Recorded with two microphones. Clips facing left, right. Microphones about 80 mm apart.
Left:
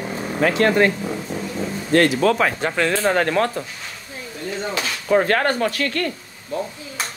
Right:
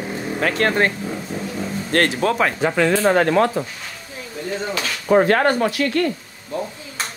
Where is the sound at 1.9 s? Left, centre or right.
Right.